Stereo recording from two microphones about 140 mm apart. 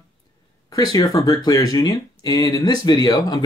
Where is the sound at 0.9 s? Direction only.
25° left (ahead or behind).